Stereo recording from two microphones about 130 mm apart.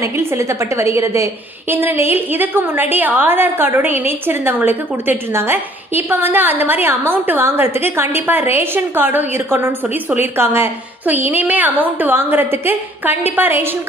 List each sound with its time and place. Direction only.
0.0 s a woman's voice: 20° right (ahead or behind)